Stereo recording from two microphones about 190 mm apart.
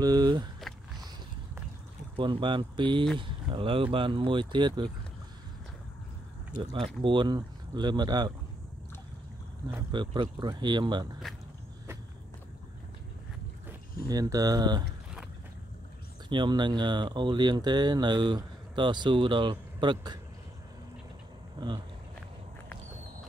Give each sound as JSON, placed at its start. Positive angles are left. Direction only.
{"t": 0.0, "sound": "speech", "side_deg": -20}
{"t": 2.1, "sound": "speech", "side_deg": -25}
{"t": 7.0, "sound": "speech", "side_deg": -25}
{"t": 9.8, "sound": "speech", "side_deg": -25}
{"t": 13.7, "sound": "speech", "side_deg": -20}
{"t": 16.3, "sound": "speech", "side_deg": -25}
{"t": 21.5, "sound": "speech", "side_deg": -25}